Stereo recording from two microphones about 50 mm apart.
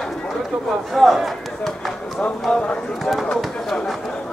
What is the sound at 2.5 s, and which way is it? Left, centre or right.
Clip-clop, centre.